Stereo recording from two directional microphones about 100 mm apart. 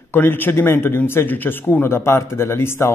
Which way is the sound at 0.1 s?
20° left (ahead or behind).